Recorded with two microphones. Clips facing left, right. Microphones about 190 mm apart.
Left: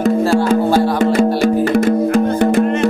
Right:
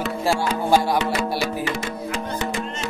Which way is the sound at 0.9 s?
45° left (ahead or behind).